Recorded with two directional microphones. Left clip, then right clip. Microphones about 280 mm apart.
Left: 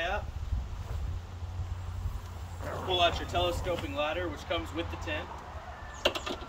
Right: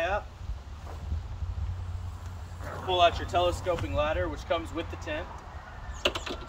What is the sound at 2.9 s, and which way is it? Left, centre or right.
Speech, centre.